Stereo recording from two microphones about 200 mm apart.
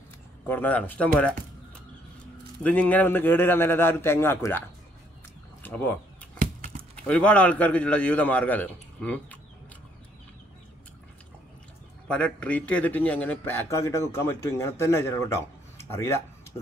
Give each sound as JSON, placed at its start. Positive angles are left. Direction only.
{"t": 0.5, "sound": "speech", "side_deg": 10}
{"t": 2.6, "sound": "speech", "side_deg": 5}
{"t": 6.3, "sound": "a sound", "side_deg": -45}
{"t": 7.1, "sound": "speech", "side_deg": 5}
{"t": 12.1, "sound": "speech", "side_deg": 5}